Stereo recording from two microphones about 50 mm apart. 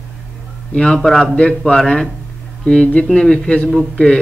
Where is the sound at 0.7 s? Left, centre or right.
Centre.